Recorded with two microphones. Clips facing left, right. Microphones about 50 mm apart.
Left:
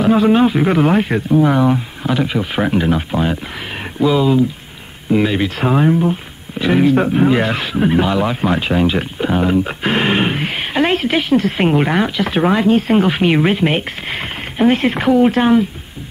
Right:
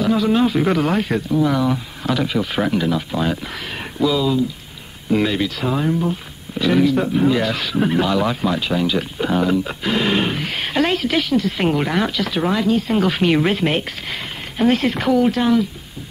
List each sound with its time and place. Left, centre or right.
0.0 s speech: left
2.0 s speech: left
5.1 s speech: centre
5.4 s speech: left
6.9 s speech: left
7.7 s speech: centre
8.4 s speech: left
9.2 s speech: left
10.6 s a woman's voice: centre
10.9 s speech: left
11.3 s speech: left
11.6 s speech: left
13.0 s speech: left